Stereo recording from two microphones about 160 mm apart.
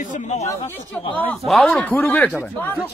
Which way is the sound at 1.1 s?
10° left (ahead or behind).